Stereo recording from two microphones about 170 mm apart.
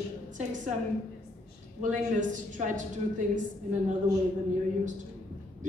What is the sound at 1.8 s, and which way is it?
A man's voice, 50° right (ahead or behind).